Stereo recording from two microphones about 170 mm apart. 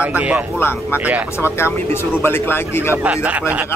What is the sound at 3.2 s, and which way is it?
Speech, 10° right (ahead or behind).